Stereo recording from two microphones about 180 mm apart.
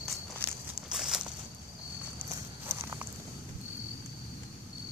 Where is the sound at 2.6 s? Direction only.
15° right (ahead or behind).